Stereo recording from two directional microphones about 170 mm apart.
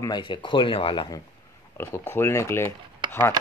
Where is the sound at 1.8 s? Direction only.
15° left (ahead or behind).